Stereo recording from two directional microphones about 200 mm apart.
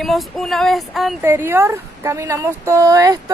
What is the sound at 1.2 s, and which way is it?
A woman's voice, 10° right (ahead or behind).